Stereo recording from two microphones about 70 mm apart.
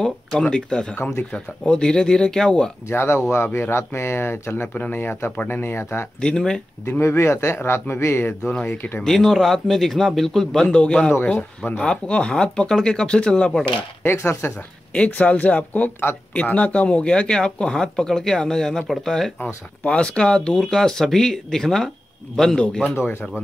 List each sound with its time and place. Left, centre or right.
0.0 s speech: centre
0.9 s speech: left
2.9 s speech: left
6.2 s speech: centre
7.0 s speech: left
8.4 s speech: centre
8.6 s speech: left
9.0 s a man's voice: centre
11.1 s speech: left
14.0 s speech: left
14.9 s speech: centre
16.5 s speech: centre
19.4 s speech: centre